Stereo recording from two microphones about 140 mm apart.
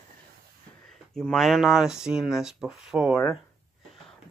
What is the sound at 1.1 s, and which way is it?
Speech, centre (ahead or behind).